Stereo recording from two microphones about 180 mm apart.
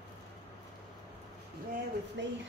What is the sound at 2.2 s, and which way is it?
Speech, 75° right (ahead or behind).